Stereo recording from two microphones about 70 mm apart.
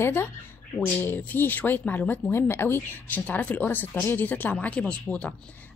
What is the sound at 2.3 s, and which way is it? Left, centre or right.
Speech, left.